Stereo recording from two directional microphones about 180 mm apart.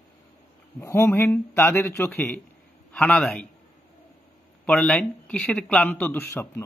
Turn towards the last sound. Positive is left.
turn(degrees=10)  # may be behind; listen again after turning